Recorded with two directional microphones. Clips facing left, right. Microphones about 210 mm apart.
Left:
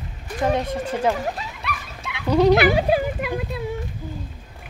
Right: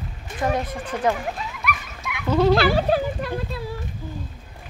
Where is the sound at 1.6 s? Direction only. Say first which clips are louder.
Right 2 dB; 30° left (ahead or behind).